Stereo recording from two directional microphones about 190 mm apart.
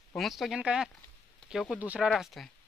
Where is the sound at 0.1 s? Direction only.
Centre (ahead or behind).